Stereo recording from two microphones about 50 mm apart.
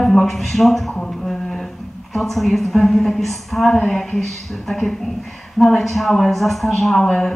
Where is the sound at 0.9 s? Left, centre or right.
Centre.